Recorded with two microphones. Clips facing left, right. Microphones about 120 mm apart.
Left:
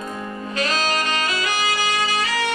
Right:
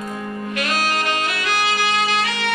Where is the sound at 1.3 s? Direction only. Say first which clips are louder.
Right 1 dB; 65° right (ahead or behind).